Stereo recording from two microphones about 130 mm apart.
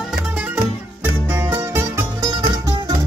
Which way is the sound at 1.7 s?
25° right (ahead or behind).